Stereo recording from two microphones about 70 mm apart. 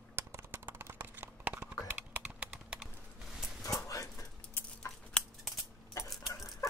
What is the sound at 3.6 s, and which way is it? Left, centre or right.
Dog, left.